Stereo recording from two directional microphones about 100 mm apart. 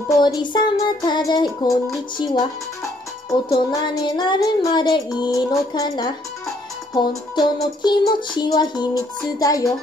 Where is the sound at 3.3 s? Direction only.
35° left (ahead or behind).